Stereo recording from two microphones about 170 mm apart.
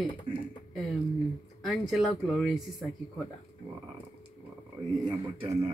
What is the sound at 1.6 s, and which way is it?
Speech, centre (ahead or behind).